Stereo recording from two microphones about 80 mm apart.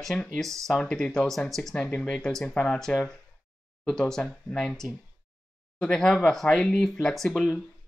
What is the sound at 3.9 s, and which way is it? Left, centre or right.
Speech, centre.